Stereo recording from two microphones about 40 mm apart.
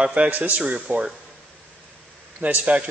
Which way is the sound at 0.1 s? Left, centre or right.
Right.